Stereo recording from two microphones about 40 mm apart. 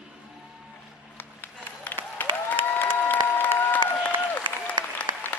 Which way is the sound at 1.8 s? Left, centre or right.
Left.